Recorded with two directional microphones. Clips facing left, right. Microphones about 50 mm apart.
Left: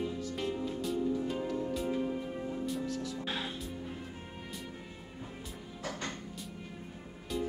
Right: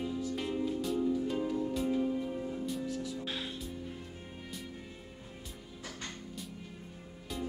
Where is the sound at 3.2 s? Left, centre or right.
Left.